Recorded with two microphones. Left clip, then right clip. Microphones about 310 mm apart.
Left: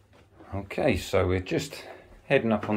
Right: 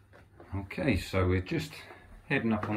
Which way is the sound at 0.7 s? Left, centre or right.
Centre.